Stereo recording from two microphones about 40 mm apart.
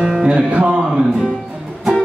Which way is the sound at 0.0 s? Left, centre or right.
Centre.